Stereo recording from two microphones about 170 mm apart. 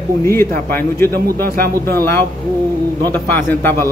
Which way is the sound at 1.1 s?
65° right (ahead or behind).